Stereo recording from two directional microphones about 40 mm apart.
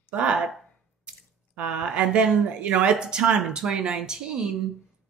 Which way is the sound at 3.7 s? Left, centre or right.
Centre.